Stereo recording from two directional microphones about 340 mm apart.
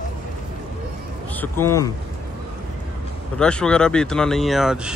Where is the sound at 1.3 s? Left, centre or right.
Centre.